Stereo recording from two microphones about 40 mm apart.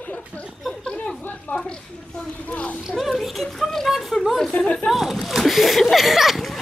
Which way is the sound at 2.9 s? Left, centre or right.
Centre.